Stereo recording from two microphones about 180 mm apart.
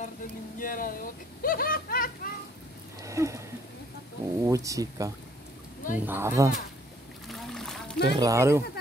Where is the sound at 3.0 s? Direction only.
15° right (ahead or behind).